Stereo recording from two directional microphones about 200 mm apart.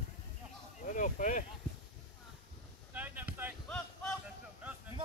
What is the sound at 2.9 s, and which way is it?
Boat, 10° right (ahead or behind).